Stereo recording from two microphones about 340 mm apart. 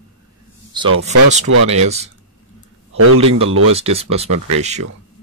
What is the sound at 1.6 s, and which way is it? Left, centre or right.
Speech, centre.